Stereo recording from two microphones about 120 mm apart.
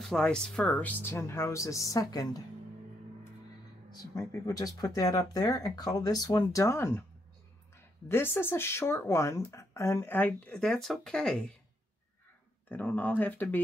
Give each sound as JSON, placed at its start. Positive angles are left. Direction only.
{"t": 0.0, "sound": "speech", "side_deg": 5}
{"t": 3.9, "sound": "speech", "side_deg": 30}
{"t": 12.6, "sound": "speech", "side_deg": 15}